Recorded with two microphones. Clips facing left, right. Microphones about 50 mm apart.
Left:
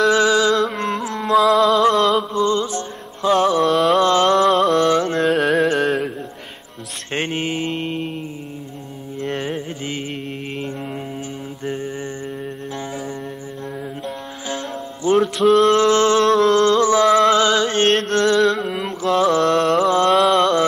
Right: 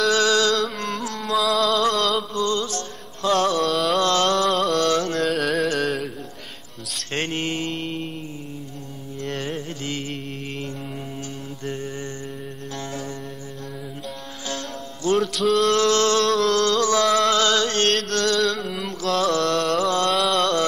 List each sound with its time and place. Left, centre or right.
0.1 s music: centre
0.7 s carnatic music: left
1.3 s music: centre
3.7 s a sound: centre
4.0 s mantra: left
4.5 s music: centre
4.7 s carnatic music: centre
7.1 s mantra: centre
9.2 s mantra: centre
11.6 s mantra: centre
15.3 s music: left
18.5 s mantra: left